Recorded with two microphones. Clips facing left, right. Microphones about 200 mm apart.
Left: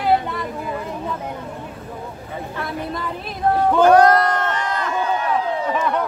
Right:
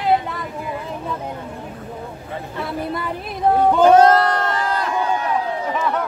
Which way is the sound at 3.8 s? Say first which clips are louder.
Even; 25° right (ahead or behind).